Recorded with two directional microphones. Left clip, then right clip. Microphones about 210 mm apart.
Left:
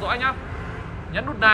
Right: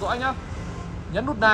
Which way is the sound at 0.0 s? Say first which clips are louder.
Left 2 dB; 25° right (ahead or behind).